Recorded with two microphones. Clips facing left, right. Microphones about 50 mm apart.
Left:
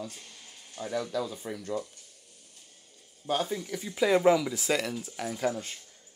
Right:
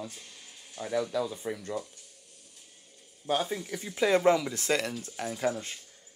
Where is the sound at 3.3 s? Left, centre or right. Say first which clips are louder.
Even; right.